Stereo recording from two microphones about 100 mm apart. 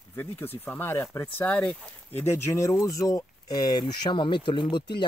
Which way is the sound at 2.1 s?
25° left (ahead or behind).